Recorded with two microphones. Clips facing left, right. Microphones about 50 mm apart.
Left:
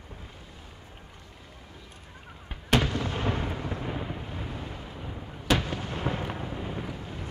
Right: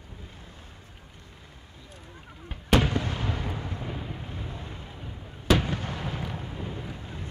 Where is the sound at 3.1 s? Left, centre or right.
Left.